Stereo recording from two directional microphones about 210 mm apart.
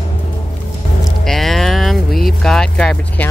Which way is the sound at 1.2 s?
Centre (ahead or behind).